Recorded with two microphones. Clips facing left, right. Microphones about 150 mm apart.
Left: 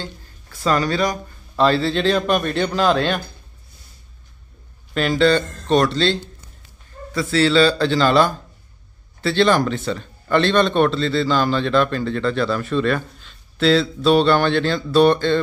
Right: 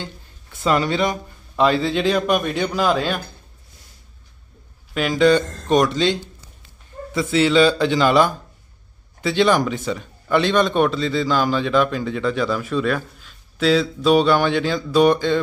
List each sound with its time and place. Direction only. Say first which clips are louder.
0.0 s a man's voice: left 1 dB; 20° right (ahead or behind)
4.9 s a man's voice: right 1 dB; 10° right (ahead or behind)